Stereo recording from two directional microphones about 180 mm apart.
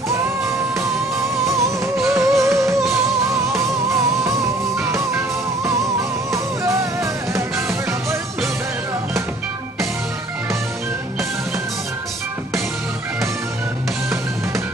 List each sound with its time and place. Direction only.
1.4 s music: 15° right (ahead or behind)